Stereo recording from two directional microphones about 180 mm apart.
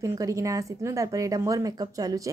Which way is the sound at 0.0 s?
15° right (ahead or behind).